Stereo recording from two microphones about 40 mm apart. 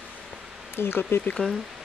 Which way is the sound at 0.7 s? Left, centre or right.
Left.